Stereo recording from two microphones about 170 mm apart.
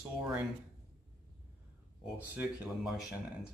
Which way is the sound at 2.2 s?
5° right (ahead or behind).